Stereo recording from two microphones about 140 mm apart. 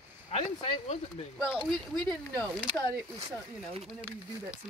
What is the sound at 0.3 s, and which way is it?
Speech, 50° left (ahead or behind).